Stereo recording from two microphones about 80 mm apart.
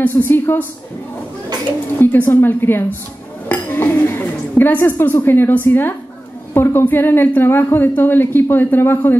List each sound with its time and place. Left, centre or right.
0.0 s a woman's voice: left
2.0 s a woman's voice: left